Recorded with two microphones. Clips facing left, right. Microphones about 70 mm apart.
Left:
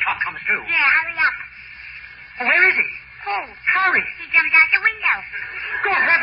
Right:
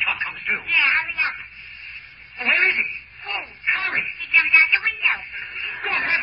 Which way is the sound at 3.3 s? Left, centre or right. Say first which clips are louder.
Left 5 dB; left.